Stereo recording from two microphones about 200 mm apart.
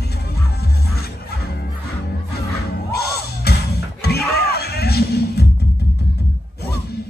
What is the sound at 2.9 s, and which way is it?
Music, 50° left (ahead or behind).